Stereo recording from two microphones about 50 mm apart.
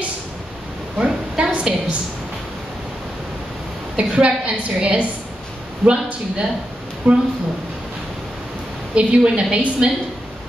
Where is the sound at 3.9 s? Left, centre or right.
Right.